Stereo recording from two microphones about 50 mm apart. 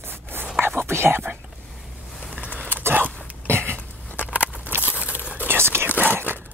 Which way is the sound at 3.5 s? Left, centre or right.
Right.